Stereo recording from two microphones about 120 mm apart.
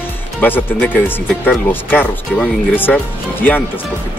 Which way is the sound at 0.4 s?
15° left (ahead or behind).